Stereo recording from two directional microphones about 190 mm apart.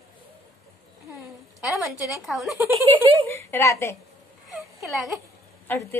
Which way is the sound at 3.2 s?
15° left (ahead or behind).